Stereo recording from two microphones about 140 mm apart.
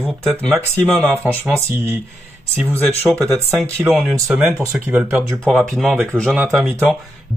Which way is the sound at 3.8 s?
10° right (ahead or behind).